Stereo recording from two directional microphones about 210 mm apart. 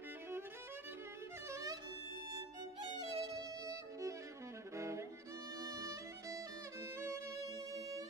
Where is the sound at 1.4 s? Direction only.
15° right (ahead or behind).